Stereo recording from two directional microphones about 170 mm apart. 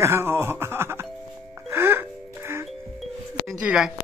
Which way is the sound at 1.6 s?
10° right (ahead or behind).